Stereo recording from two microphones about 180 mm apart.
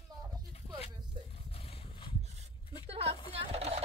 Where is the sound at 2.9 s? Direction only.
35° right (ahead or behind).